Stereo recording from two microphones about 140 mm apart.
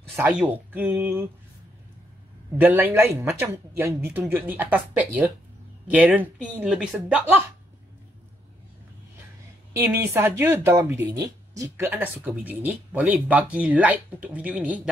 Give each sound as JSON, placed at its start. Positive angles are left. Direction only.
{"t": 0.2, "sound": "speech", "side_deg": -10}
{"t": 2.5, "sound": "speech", "side_deg": -15}
{"t": 9.8, "sound": "speech", "side_deg": -15}